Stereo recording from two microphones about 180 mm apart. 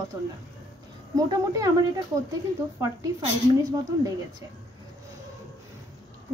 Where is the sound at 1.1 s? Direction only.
20° right (ahead or behind).